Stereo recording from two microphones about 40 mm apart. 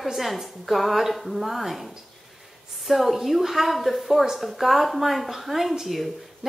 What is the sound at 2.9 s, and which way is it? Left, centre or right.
Speech, centre.